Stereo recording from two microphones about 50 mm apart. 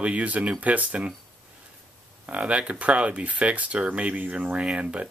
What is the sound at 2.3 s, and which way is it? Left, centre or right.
Speech, right.